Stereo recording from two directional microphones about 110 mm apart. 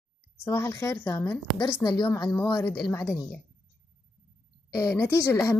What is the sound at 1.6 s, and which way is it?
Speech, 40° left (ahead or behind).